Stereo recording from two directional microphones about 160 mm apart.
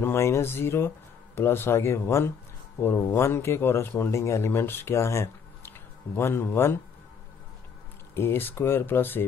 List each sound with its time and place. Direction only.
0.0 s a man's voice: 15° left (ahead or behind)
8.1 s a man's voice: 15° left (ahead or behind)